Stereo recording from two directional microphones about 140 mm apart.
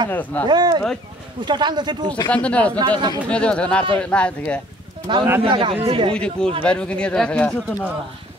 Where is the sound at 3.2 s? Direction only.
10° left (ahead or behind).